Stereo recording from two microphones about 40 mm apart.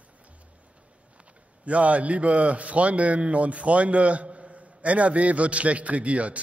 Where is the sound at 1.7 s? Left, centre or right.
Right.